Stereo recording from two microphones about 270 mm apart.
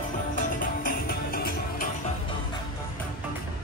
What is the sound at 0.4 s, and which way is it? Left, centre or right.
Music, left.